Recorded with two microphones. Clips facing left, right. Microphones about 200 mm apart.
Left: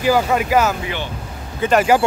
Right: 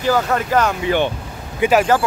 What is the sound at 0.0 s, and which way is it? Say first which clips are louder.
Speech: left 1 dB; 10° left (ahead or behind).